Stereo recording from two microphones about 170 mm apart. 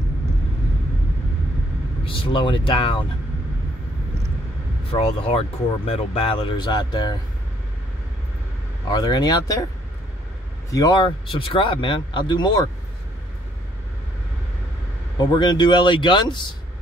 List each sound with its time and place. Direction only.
2.0 s speech: 30° left (ahead or behind)
4.9 s speech: 35° left (ahead or behind)
8.9 s speech: 25° left (ahead or behind)
10.7 s speech: 25° left (ahead or behind)
15.3 s speech: 25° left (ahead or behind)